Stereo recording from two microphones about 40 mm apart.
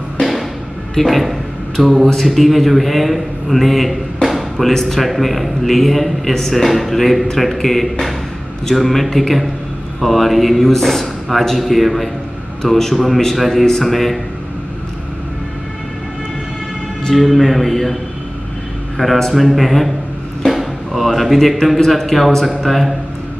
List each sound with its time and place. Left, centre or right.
0.2 s music: centre
0.9 s a man's voice: centre
17.1 s a man's voice: centre
19.0 s a man's voice: centre
19.3 s a man's voice: centre